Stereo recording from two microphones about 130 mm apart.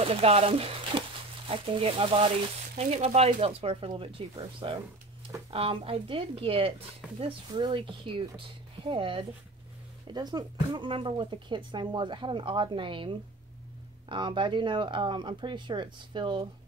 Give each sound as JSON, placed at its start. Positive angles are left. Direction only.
{"t": 0.0, "sound": "speech", "side_deg": -50}